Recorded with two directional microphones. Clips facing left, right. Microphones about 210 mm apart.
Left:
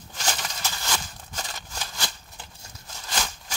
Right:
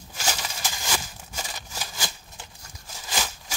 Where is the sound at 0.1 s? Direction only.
5° right (ahead or behind).